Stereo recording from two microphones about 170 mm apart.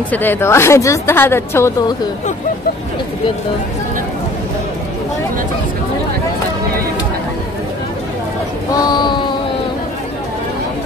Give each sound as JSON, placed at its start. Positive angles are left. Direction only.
{"t": 0.1, "sound": "a woman's voice", "side_deg": 10}
{"t": 8.7, "sound": "child singing", "side_deg": 25}